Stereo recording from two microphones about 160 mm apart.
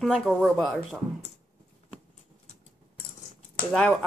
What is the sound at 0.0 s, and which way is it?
Speech, centre (ahead or behind).